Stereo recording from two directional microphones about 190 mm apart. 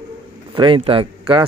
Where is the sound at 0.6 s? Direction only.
25° right (ahead or behind).